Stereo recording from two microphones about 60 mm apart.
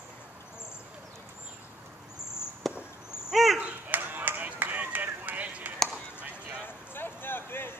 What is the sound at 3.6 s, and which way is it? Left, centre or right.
Run, right.